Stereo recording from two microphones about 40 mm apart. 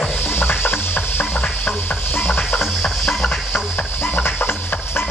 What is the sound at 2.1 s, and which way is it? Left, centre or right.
Music, left.